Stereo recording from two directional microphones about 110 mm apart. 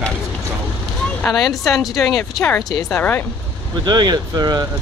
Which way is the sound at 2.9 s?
15° left (ahead or behind).